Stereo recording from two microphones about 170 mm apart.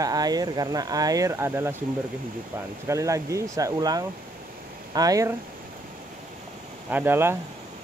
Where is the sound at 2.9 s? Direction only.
15° right (ahead or behind).